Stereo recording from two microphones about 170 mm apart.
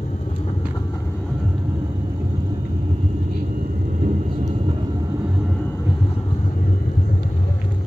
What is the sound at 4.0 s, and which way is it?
Vehicle, 45° right (ahead or behind).